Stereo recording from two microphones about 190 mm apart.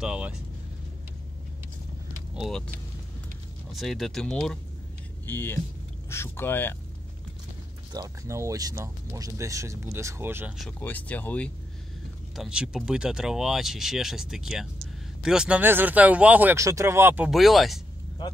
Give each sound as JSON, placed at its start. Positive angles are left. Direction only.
{"t": 0.0, "sound": "speech", "side_deg": -5}
{"t": 2.3, "sound": "speech", "side_deg": 0}
{"t": 3.7, "sound": "speech", "side_deg": 0}
{"t": 7.9, "sound": "speech", "side_deg": -20}
{"t": 10.8, "sound": "speech", "side_deg": 10}
{"t": 12.4, "sound": "speech", "side_deg": -5}